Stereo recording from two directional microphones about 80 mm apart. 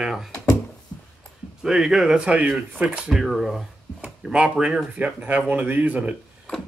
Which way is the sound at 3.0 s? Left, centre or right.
Centre.